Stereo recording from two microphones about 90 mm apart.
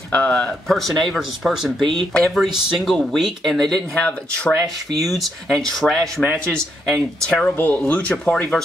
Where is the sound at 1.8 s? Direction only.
60° right (ahead or behind).